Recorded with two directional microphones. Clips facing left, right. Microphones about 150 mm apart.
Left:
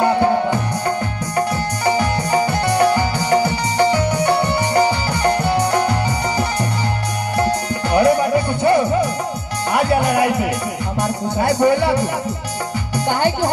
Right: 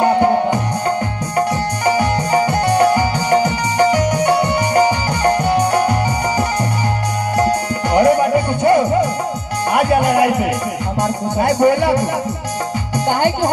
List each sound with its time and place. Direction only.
0.0 s music: 20° right (ahead or behind)
1.9 s music: 15° right (ahead or behind)
7.3 s tabla: 15° right (ahead or behind)
8.4 s music: 15° right (ahead or behind)